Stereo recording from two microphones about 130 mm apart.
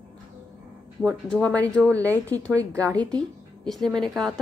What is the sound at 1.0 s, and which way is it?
A woman's voice, 10° left (ahead or behind).